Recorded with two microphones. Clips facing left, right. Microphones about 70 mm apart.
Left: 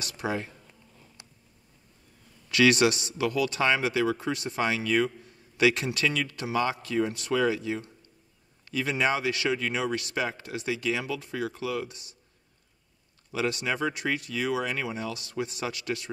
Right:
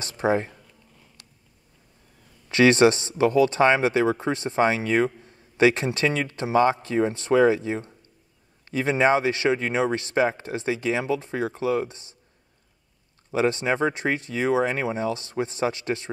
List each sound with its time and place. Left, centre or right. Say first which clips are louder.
0.0 s speech: right 8 dB; right
2.5 s speech: right 5 dB; right
13.3 s speech: right 6 dB; right